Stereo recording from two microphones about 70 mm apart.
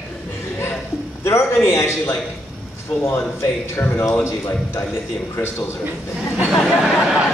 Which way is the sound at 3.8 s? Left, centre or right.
Left.